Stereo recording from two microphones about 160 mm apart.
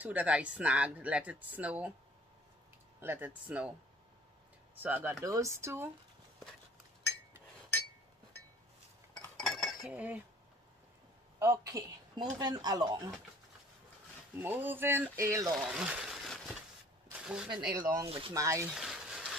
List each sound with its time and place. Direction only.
0.0 s speech: 10° right (ahead or behind)
3.0 s speech: 10° right (ahead or behind)
4.7 s speech: 10° right (ahead or behind)
9.1 s cutlery: 5° left (ahead or behind)
11.3 s speech: 20° right (ahead or behind)
14.4 s speech: 15° right (ahead or behind)
15.6 s a sound: 5° right (ahead or behind)
18.0 s speech: 35° right (ahead or behind)
18.3 s speech: 20° right (ahead or behind)
18.8 s a sound: centre (ahead or behind)